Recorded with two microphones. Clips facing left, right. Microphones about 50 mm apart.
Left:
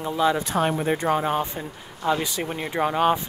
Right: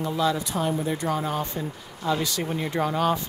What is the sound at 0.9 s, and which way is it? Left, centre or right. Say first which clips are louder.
Speech: left 4 dB; left.